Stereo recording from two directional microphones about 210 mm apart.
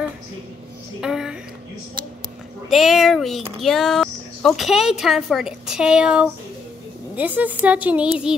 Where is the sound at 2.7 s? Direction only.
Centre (ahead or behind).